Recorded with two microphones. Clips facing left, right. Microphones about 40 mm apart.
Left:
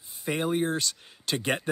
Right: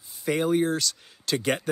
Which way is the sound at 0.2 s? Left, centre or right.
Centre.